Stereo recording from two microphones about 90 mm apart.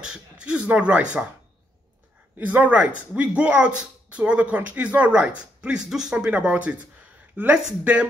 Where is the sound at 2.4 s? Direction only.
15° right (ahead or behind).